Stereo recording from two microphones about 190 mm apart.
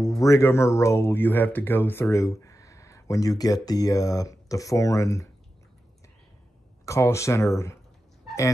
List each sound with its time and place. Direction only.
0.0 s speech: 15° left (ahead or behind)
6.9 s speech: 15° left (ahead or behind)